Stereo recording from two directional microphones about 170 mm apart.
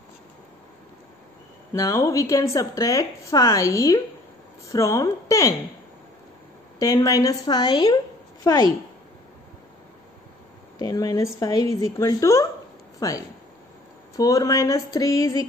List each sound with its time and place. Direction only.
1.7 s speech: 20° left (ahead or behind)
6.8 s speech: 20° left (ahead or behind)
10.8 s speech: 20° left (ahead or behind)